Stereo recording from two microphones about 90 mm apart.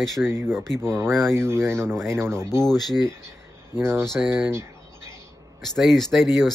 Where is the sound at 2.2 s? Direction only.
30° right (ahead or behind).